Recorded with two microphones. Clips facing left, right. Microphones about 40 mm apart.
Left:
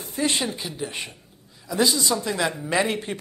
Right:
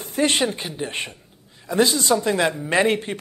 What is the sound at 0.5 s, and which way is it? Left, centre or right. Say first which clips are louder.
Speech: right 3 dB; right.